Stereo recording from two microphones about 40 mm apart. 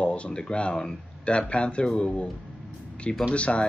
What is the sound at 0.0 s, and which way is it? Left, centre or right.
Speech, left.